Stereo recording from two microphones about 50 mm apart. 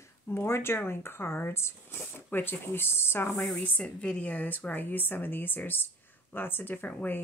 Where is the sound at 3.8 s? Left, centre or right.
Left.